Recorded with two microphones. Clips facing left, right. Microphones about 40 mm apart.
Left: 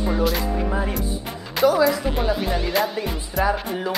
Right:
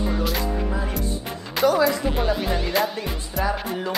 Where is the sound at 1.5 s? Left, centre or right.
Centre.